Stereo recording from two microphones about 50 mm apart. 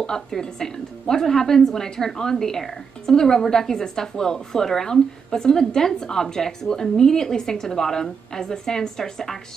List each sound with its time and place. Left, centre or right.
0.0 s a woman's voice: centre